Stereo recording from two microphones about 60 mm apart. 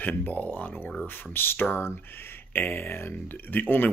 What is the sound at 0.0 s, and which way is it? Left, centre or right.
Speech, left.